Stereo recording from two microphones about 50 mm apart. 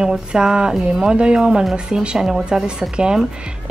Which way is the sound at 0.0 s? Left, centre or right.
Centre.